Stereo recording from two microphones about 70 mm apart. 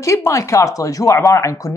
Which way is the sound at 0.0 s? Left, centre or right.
Left.